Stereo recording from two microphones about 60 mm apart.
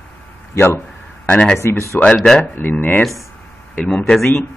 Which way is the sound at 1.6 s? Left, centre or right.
Left.